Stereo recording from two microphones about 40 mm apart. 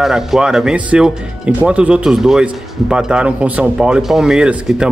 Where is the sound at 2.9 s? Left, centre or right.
Right.